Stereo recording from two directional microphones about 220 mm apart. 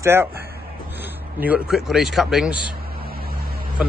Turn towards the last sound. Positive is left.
turn(degrees=-45)  # may be behind; listen again after turning